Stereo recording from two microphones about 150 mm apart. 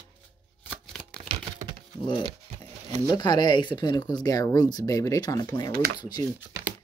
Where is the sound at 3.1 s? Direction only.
30° left (ahead or behind).